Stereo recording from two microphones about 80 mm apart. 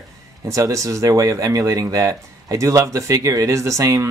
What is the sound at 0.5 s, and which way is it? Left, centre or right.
Speech, right.